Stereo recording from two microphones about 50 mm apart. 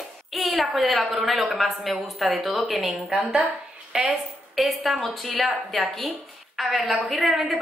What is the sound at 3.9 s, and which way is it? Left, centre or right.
Speech, centre.